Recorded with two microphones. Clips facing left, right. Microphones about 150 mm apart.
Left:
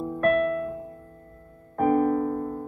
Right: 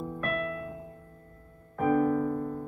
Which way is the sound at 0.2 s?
50° left (ahead or behind).